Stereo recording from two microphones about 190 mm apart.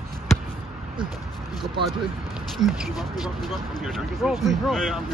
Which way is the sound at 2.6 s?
Centre (ahead or behind).